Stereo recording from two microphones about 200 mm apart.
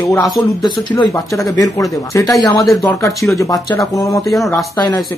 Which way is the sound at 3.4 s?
15° left (ahead or behind).